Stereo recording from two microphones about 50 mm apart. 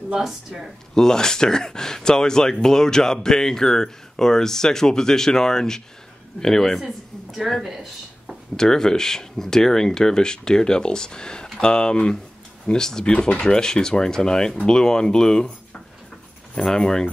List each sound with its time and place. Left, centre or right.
0.1 s speech: centre
0.9 s speech: centre
7.6 s a sound: centre
8.5 s speech: centre
16.5 s speech: centre